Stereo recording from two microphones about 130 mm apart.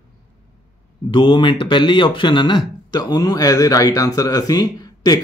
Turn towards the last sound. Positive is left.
turn(degrees=30)  # may be behind; listen again after turning